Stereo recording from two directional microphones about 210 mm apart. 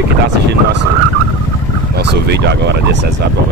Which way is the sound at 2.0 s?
55° right (ahead or behind).